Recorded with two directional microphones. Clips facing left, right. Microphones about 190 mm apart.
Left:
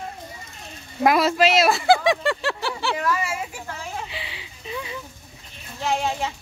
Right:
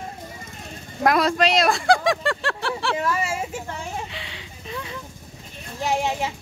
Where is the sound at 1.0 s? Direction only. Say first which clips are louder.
Left 1 dB; 5° left (ahead or behind).